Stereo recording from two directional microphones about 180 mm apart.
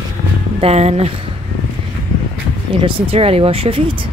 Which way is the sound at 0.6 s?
35° right (ahead or behind).